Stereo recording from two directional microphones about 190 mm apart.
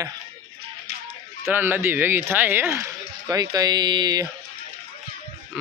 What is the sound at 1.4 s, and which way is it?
Speech, 10° right (ahead or behind).